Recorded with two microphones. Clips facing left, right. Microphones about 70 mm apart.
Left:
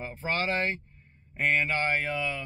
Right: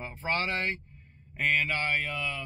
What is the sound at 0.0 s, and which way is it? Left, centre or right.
Speech, left.